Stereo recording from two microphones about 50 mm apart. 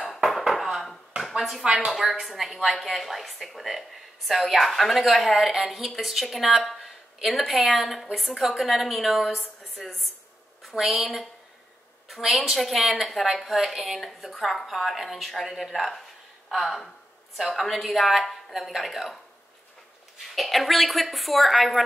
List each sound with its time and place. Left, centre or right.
0.1 s bouncing: centre
0.4 s dishes: centre
1.6 s a woman's voice: right
1.9 s a woman's voice: centre
20.3 s a woman's voice: centre